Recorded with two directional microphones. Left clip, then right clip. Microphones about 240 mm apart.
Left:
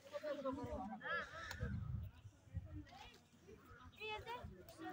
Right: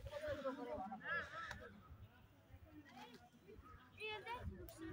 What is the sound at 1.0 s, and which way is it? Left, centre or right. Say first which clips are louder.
Honk: left 1 dB; centre.